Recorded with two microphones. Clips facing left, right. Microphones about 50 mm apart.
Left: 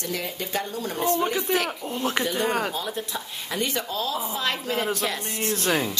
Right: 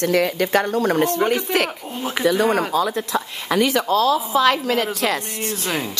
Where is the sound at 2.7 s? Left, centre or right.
Right.